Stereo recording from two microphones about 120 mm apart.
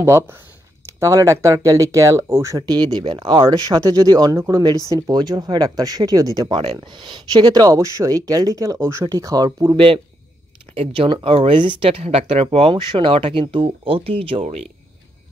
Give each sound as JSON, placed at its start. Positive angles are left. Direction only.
{"t": 0.0, "sound": "speech", "side_deg": -20}
{"t": 6.5, "sound": "speech", "side_deg": -50}
{"t": 10.8, "sound": "speech", "side_deg": -45}
{"t": 14.4, "sound": "speech", "side_deg": -65}